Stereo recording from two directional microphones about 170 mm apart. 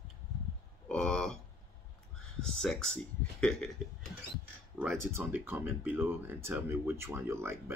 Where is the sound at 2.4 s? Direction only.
5° left (ahead or behind).